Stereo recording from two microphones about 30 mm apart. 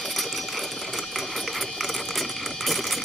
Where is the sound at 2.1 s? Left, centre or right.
Centre.